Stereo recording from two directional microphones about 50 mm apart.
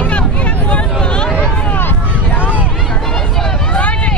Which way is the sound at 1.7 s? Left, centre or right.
Left.